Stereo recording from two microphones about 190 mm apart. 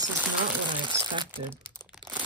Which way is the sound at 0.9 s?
25° right (ahead or behind).